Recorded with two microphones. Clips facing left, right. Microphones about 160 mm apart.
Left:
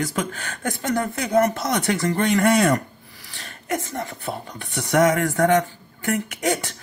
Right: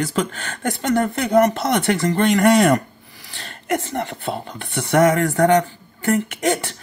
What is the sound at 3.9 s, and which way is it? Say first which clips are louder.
Speech: right 4 dB; 70° right (ahead or behind).